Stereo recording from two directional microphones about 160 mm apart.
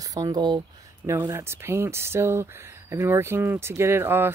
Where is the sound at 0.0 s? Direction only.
25° right (ahead or behind).